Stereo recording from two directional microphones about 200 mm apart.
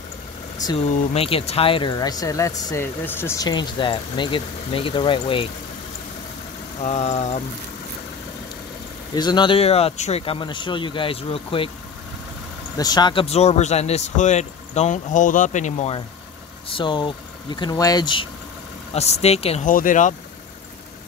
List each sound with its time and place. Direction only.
0.6 s speech: 20° left (ahead or behind)
6.8 s a man's voice: 35° left (ahead or behind)
9.1 s speech: 20° left (ahead or behind)
12.7 s a man's voice: 20° left (ahead or behind); by 16.0 s 35° left (ahead or behind)
16.7 s a man's voice: 25° left (ahead or behind)
19.7 s a man's voice: 40° left (ahead or behind)